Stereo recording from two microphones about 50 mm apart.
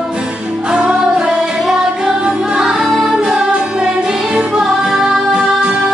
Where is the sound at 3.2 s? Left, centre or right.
Centre.